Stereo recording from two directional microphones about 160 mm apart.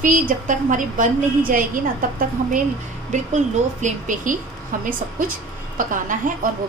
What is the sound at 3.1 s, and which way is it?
Speech, 50° right (ahead or behind).